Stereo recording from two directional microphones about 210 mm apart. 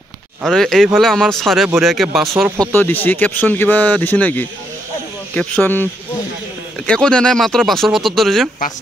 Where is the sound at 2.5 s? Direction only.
15° right (ahead or behind).